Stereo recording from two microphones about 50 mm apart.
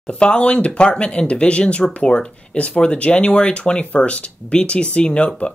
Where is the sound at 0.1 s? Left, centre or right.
Centre.